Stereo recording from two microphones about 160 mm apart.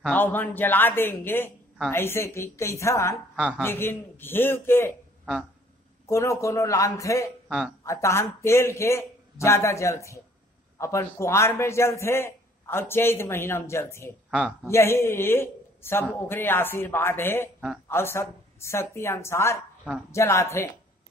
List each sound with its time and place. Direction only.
0.1 s a man's voice: 10° left (ahead or behind)
3.3 s a man's voice: 5° right (ahead or behind)
3.6 s a man's voice: 15° left (ahead or behind)
6.0 s a man's voice: 20° left (ahead or behind)
7.4 s speech: centre (ahead or behind)
7.8 s a man's voice: 20° left (ahead or behind)